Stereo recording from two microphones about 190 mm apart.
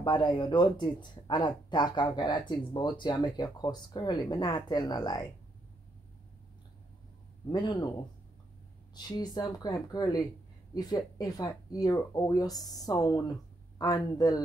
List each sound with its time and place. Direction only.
0.0 s speech: 25° left (ahead or behind)
7.4 s speech: 20° left (ahead or behind)
8.9 s speech: 20° left (ahead or behind)